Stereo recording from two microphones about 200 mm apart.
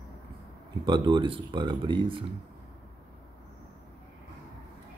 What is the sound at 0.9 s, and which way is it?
Speech, 25° right (ahead or behind).